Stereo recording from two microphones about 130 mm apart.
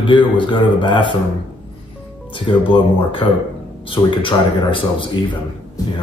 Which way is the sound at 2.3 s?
40° left (ahead or behind).